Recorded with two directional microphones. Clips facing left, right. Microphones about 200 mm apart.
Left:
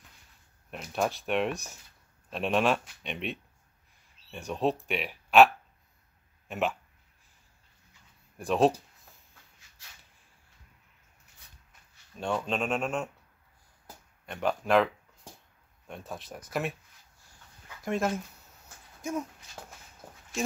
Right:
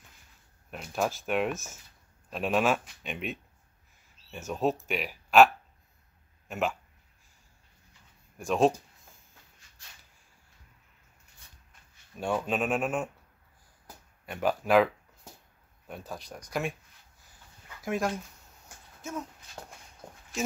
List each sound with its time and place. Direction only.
0.7 s speech: centre (ahead or behind)
8.4 s speech: centre (ahead or behind)
12.2 s speech: 10° right (ahead or behind)
14.2 s speech: 5° right (ahead or behind)
15.9 s speech: centre (ahead or behind)
17.8 s speech: centre (ahead or behind)
20.0 s a sound: 5° left (ahead or behind)